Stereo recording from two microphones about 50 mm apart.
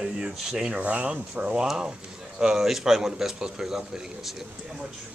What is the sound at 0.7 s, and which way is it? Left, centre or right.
Speech, right.